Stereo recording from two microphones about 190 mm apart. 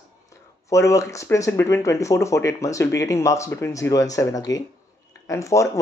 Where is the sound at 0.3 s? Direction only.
15° left (ahead or behind).